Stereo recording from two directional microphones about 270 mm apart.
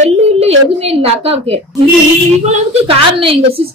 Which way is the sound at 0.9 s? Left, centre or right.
Right.